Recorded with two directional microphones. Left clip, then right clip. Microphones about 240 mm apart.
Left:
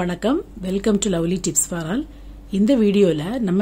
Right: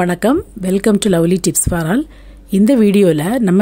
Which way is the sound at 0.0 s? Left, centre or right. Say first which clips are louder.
Right 7 dB; right.